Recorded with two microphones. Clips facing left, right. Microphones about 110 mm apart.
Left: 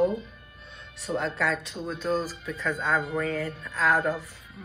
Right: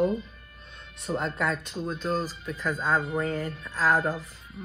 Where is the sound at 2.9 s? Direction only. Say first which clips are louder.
Right 1 dB; 30° right (ahead or behind).